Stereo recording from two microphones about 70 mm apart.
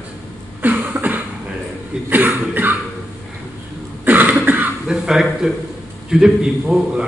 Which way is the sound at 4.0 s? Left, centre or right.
Right.